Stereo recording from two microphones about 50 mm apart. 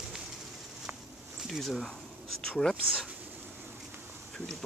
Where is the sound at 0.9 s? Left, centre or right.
Right.